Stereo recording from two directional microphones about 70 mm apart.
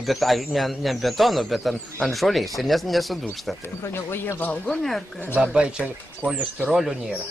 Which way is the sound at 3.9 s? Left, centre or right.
Left.